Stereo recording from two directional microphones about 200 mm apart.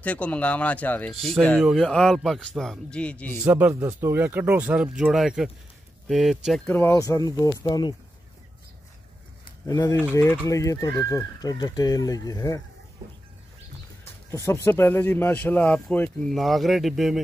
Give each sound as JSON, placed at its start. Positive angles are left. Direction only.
{"t": 0.0, "sound": "speech", "side_deg": 5}
{"t": 3.4, "sound": "speech", "side_deg": -10}
{"t": 9.7, "sound": "speech", "side_deg": 20}
{"t": 14.3, "sound": "speech", "side_deg": 15}